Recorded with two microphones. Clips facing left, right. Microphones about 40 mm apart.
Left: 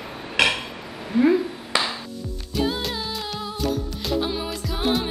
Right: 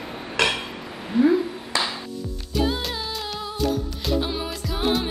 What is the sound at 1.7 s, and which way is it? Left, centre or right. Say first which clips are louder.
Music: left 4 dB; left.